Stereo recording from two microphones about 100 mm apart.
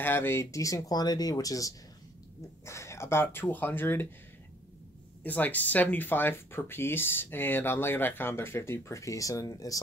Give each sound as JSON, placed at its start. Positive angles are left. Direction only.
{"t": 0.0, "sound": "speech", "side_deg": 20}
{"t": 5.2, "sound": "speech", "side_deg": 15}